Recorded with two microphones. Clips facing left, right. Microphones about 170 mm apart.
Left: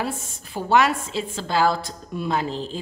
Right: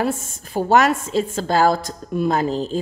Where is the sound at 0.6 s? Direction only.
45° right (ahead or behind).